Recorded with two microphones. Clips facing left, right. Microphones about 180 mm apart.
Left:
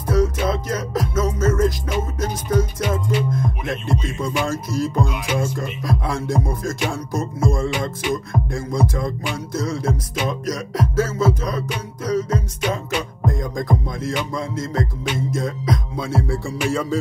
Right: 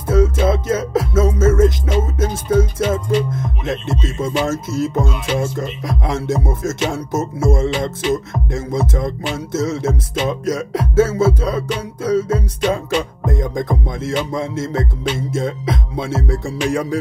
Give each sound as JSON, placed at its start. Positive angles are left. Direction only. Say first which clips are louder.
{"t": 0.0, "sound": "music", "louder": "right 4 dB", "side_deg": -25}